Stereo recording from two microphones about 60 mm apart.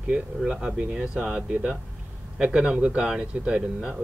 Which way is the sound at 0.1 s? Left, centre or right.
Centre.